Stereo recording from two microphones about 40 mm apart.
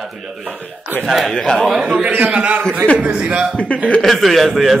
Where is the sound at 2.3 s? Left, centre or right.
Right.